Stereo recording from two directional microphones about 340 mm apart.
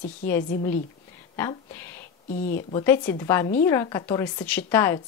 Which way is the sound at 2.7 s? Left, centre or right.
Centre.